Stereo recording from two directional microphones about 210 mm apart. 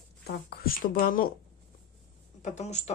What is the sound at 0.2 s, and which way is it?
Speech, 45° left (ahead or behind).